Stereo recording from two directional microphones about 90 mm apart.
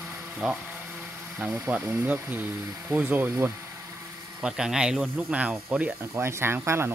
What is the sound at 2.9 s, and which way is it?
Speech, 20° right (ahead or behind).